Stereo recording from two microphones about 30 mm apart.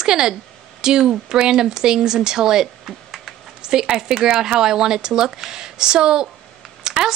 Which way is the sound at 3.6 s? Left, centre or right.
Right.